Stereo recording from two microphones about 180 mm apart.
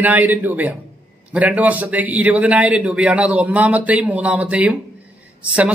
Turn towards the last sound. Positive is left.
turn(degrees=-5)  # may be behind; listen again after turning